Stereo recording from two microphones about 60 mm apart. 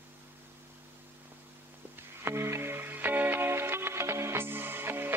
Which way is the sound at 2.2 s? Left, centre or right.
Right.